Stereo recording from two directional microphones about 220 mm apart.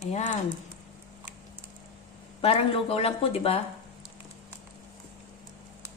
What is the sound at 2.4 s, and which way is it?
Speech, 25° left (ahead or behind).